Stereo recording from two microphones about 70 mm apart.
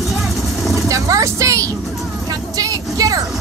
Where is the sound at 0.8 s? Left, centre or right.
Right.